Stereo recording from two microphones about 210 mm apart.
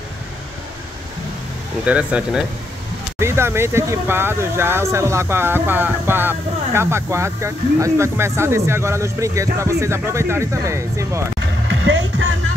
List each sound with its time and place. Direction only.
1.9 s speech: 5° right (ahead or behind)
11.8 s speech: 55° right (ahead or behind)